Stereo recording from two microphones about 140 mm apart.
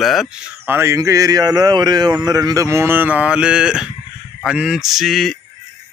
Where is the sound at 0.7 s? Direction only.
20° right (ahead or behind); by 5.3 s centre (ahead or behind).